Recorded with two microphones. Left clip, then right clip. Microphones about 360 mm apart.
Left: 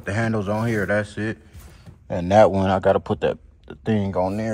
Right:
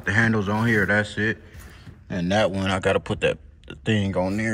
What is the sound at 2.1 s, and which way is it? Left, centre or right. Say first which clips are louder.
Speech: left 7 dB; centre.